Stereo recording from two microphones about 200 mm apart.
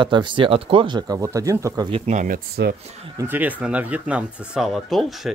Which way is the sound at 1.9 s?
30° right (ahead or behind).